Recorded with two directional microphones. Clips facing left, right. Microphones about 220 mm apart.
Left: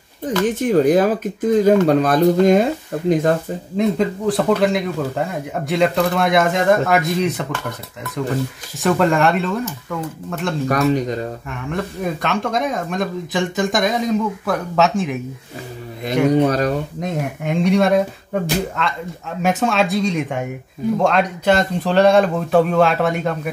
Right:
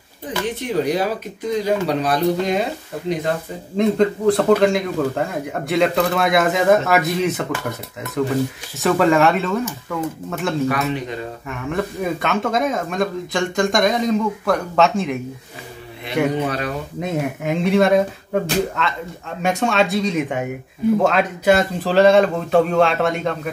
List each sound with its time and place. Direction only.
0.5 s speech: 45° left (ahead or behind)
3.7 s speech: 5° left (ahead or behind)
8.7 s speech: centre (ahead or behind)
10.7 s speech: 40° left (ahead or behind)
11.4 s speech: centre (ahead or behind)
16.3 s speech: 40° left (ahead or behind)
17.0 s speech: centre (ahead or behind)